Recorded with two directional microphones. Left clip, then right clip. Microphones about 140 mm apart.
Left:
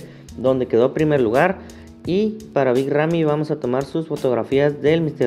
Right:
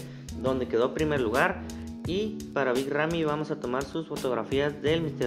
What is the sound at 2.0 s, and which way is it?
Speech, 50° left (ahead or behind).